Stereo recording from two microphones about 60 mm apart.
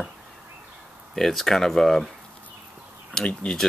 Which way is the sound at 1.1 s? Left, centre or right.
Centre.